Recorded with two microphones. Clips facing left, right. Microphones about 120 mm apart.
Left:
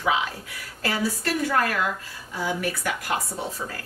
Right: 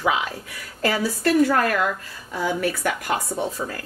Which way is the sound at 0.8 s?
40° right (ahead or behind).